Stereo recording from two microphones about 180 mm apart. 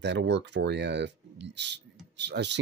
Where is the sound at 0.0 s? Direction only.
75° right (ahead or behind).